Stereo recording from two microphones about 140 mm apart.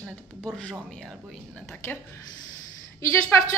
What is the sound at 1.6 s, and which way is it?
Speech, 15° left (ahead or behind).